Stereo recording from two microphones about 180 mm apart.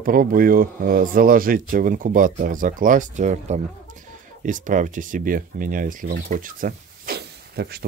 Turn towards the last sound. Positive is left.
turn(degrees=-60)  # may be behind; listen again after turning